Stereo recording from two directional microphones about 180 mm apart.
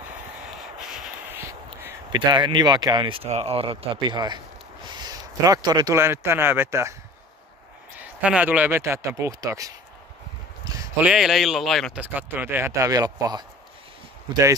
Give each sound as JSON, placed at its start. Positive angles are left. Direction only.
{"t": 1.3, "sound": "a sound", "side_deg": -10}
{"t": 2.1, "sound": "speech", "side_deg": -25}
{"t": 8.0, "sound": "speech", "side_deg": -5}
{"t": 10.6, "sound": "a sound", "side_deg": -20}
{"t": 11.0, "sound": "speech", "side_deg": -5}
{"t": 12.0, "sound": "speech", "side_deg": -10}